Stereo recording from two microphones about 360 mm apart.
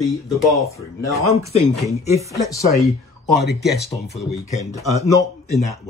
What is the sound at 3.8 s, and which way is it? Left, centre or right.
Speech, centre.